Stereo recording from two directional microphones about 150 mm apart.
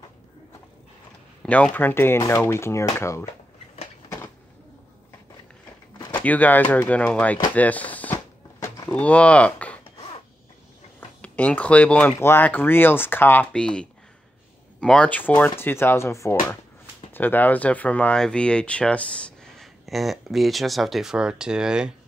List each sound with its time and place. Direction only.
1.4 s speech: 10° left (ahead or behind)
6.1 s speech: 10° left (ahead or behind)
8.5 s a sound: 25° left (ahead or behind)
8.9 s speech: 10° left (ahead or behind)
11.0 s speech: 10° left (ahead or behind)